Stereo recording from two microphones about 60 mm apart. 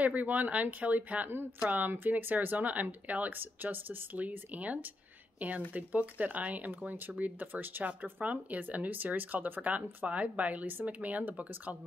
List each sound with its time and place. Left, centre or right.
0.0 s speech: right